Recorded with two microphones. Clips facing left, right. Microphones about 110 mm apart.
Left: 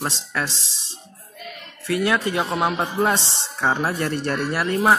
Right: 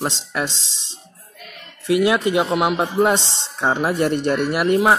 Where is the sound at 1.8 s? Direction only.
15° right (ahead or behind).